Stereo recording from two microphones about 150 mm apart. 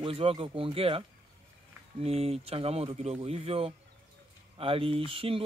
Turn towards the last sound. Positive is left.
turn(degrees=-35)  # may be behind; listen again after turning